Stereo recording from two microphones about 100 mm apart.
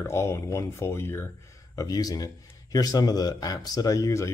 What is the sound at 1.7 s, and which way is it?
Speech, 40° left (ahead or behind).